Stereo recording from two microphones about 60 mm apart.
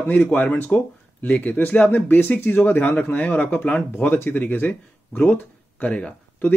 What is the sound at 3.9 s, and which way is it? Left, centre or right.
Speech, left.